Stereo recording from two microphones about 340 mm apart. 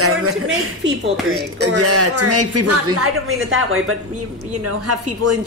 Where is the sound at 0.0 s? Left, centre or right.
Right.